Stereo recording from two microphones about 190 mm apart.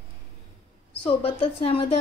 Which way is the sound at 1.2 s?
30° left (ahead or behind).